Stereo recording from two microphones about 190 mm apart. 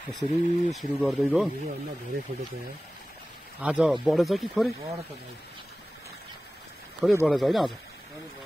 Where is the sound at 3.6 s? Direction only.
5° right (ahead or behind).